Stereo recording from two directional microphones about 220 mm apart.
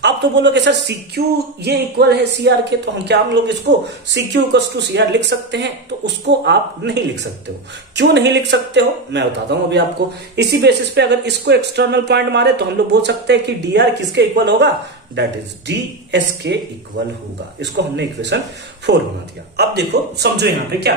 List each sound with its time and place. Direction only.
0.0 s speech: 50° right (ahead or behind)
17.6 s speech: 50° right (ahead or behind)